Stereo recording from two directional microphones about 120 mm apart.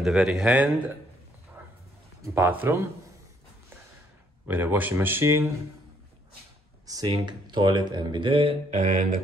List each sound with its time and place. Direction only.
0.0 s speech: 5° right (ahead or behind)
2.2 s speech: 20° right (ahead or behind)
4.5 s speech: 15° right (ahead or behind)
6.9 s speech: 30° right (ahead or behind); by 8.5 s 50° right (ahead or behind)
8.6 s mantra: 90° right